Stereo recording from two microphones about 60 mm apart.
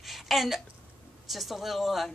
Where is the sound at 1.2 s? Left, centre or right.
Centre.